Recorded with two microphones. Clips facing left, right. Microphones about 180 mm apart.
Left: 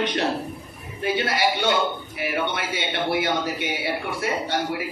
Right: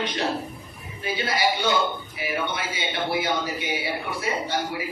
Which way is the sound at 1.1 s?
65° left (ahead or behind).